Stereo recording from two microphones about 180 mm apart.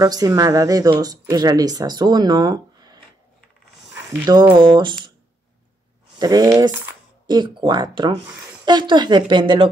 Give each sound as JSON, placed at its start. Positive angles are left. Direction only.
{"t": 0.0, "sound": "speech", "side_deg": -20}
{"t": 3.9, "sound": "speech", "side_deg": -25}
{"t": 6.1, "sound": "speech", "side_deg": -20}